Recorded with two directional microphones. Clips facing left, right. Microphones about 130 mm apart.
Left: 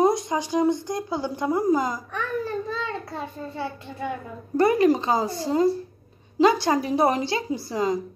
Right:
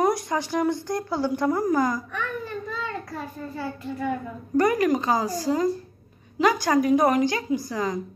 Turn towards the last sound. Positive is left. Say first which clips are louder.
# left 1 dB
turn(degrees=25)  # may be behind; listen again after turning